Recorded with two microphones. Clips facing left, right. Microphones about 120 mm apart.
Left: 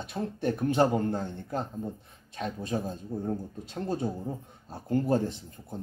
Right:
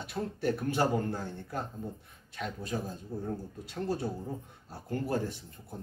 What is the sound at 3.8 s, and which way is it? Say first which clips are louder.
Speech: left 2 dB; 20° left (ahead or behind).